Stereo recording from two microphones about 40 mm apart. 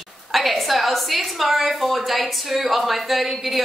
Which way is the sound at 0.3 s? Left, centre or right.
Centre.